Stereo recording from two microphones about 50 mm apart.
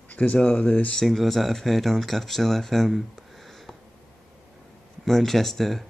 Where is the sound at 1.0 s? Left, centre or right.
Centre.